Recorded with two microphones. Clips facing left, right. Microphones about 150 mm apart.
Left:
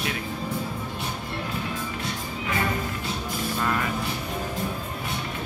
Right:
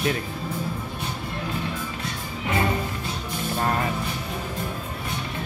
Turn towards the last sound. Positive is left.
turn(degrees=-40)  # may be behind; listen again after turning